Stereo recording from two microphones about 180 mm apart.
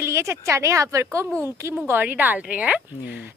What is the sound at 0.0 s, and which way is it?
A woman's voice, 15° right (ahead or behind).